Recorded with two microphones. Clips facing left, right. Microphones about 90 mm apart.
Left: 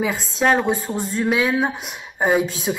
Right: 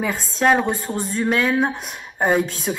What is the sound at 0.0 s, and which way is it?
Speech, centre (ahead or behind).